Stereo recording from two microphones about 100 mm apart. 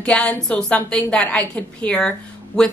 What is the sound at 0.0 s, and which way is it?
A woman's voice, 10° left (ahead or behind).